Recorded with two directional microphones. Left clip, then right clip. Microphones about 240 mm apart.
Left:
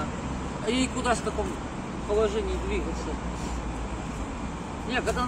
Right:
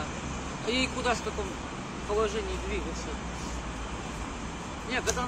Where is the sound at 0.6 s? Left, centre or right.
Centre.